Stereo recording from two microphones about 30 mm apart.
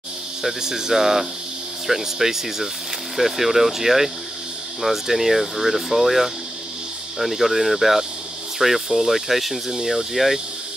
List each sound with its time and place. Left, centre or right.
0.4 s speech: centre